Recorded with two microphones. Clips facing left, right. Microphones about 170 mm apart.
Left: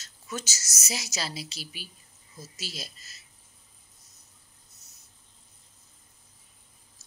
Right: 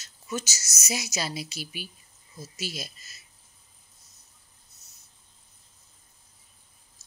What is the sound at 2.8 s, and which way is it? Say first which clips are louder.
Speech: right 2 dB; 40° left (ahead or behind).